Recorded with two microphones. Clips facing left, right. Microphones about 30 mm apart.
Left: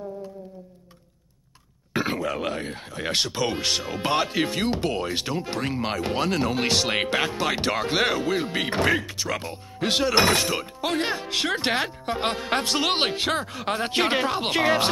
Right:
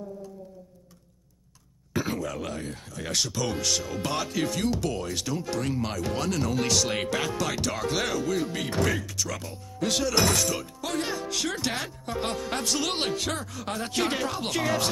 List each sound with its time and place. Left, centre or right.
2.0 s speech: left